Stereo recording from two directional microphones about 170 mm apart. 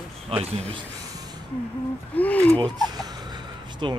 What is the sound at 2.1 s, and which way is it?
Speech, 10° left (ahead or behind).